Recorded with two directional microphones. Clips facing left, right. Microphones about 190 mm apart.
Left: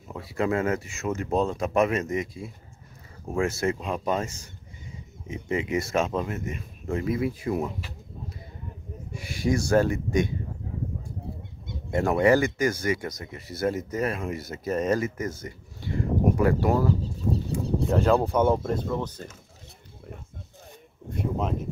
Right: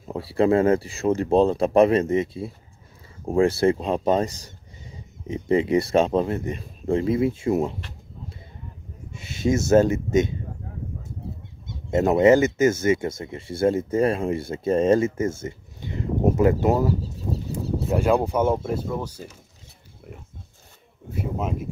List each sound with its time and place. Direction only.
0.1 s speech: 30° right (ahead or behind)
9.1 s speech: 25° right (ahead or behind)
11.9 s speech: 20° right (ahead or behind)
17.3 s speech: 5° right (ahead or behind)
21.1 s speech: 5° right (ahead or behind)